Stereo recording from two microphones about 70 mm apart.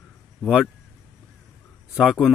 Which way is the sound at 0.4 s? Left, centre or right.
Centre.